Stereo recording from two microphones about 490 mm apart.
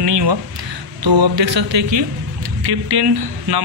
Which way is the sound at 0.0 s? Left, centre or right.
Right.